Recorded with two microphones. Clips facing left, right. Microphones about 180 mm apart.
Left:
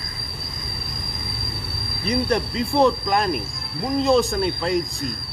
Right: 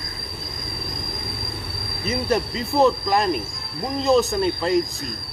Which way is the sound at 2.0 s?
5° right (ahead or behind).